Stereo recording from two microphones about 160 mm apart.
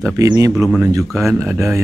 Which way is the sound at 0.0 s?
20° right (ahead or behind).